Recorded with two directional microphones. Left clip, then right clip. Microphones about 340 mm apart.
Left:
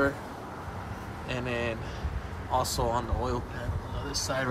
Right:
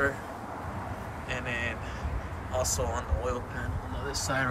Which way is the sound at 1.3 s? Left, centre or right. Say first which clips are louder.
Left 1 dB; centre.